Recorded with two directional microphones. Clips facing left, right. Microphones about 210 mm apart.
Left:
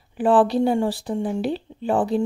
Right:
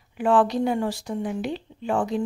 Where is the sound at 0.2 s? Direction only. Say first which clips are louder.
Left 3 dB; 35° left (ahead or behind).